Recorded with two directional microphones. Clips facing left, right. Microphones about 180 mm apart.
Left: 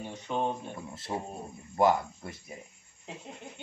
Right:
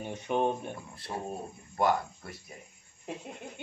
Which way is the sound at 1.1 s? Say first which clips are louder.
Even; 15° left (ahead or behind).